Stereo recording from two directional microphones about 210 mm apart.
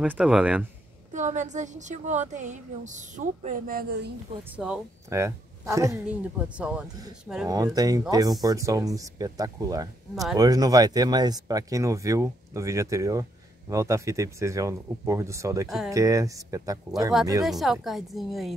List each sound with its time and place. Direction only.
0.0 s speech: 5° right (ahead or behind)
1.1 s a woman's voice: 35° right (ahead or behind)
4.6 s speech: 5° right (ahead or behind)
7.4 s speech: 15° right (ahead or behind)
17.5 s speech: centre (ahead or behind)